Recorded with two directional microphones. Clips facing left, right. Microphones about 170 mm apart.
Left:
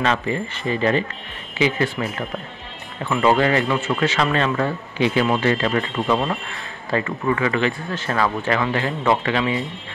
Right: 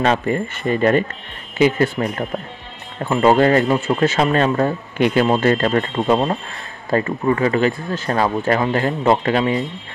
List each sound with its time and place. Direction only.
0.0 s speech: 45° right (ahead or behind)
4.9 s speech: 55° right (ahead or behind)
5.2 s speech: 40° right (ahead or behind)